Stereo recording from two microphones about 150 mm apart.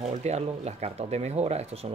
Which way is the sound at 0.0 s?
45° right (ahead or behind).